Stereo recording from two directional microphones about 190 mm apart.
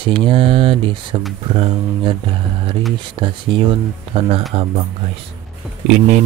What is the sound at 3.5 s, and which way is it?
Speech, 25° right (ahead or behind).